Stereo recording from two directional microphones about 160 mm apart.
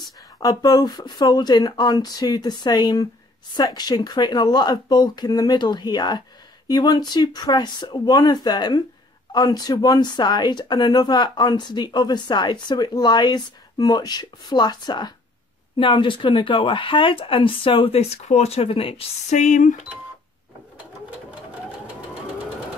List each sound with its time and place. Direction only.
0.4 s speech: 25° left (ahead or behind); by 19.7 s 50° left (ahead or behind)